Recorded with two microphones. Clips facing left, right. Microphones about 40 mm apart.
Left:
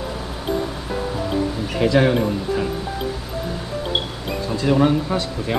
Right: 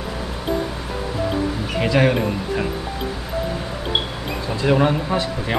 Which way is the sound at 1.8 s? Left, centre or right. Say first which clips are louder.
Left 1 dB; right.